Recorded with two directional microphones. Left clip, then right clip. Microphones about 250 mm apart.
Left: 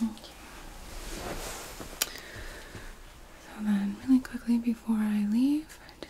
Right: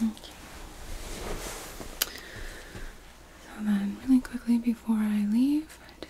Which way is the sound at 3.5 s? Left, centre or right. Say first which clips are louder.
Right 1 dB; right.